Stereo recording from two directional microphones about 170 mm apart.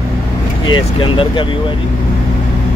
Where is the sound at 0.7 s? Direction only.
30° left (ahead or behind).